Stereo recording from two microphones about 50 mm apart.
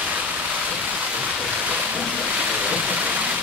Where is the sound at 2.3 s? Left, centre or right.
Right.